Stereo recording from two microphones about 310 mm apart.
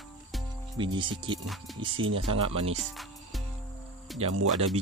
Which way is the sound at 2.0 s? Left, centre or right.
Right.